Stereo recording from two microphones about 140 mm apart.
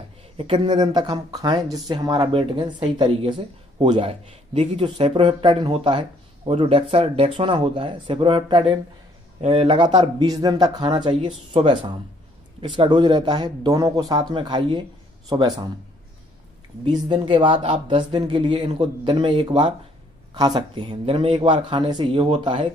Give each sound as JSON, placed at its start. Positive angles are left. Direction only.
{"t": 0.4, "sound": "speech", "side_deg": -35}
{"t": 16.8, "sound": "speech", "side_deg": -30}